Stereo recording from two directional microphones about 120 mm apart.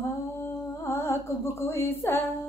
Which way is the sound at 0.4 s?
20° left (ahead or behind).